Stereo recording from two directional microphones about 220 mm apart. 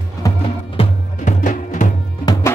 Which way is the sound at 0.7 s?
35° left (ahead or behind).